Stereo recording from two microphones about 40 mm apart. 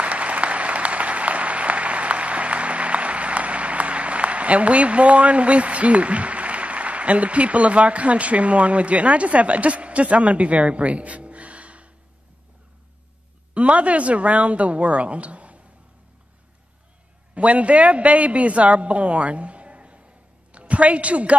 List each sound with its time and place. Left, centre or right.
0.0 s applause: right
13.6 s a woman's voice: right
17.3 s a man's voice: right